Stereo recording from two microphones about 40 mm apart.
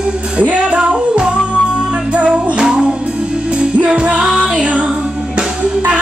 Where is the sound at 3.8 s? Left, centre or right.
Right.